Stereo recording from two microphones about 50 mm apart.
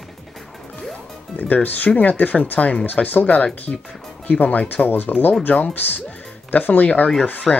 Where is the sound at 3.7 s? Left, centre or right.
Centre.